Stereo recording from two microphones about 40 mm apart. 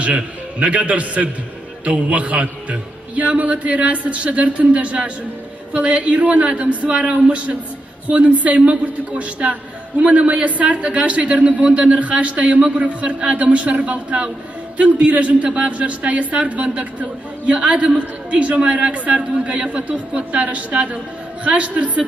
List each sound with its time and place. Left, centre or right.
0.0 s a man's voice: right